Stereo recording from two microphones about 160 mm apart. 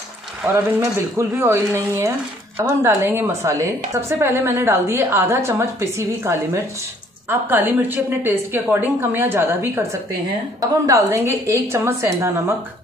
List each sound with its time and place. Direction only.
0.5 s speech: 15° right (ahead or behind)